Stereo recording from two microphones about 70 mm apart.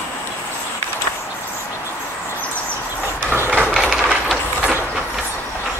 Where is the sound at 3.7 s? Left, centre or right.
Centre.